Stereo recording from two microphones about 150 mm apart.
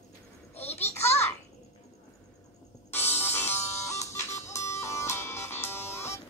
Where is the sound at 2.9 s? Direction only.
15° left (ahead or behind).